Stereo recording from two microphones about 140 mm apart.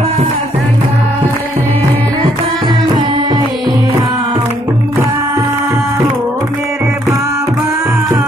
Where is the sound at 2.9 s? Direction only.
35° right (ahead or behind).